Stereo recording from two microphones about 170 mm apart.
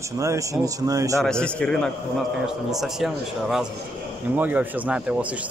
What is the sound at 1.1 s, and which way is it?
A man's voice, 5° left (ahead or behind).